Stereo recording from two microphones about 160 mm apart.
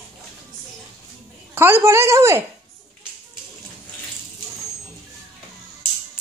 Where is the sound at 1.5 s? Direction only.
15° right (ahead or behind).